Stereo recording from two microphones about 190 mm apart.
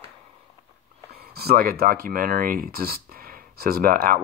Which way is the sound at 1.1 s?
55° right (ahead or behind).